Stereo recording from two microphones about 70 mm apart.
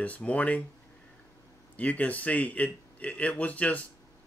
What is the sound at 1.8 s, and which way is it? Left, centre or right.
Speech, left.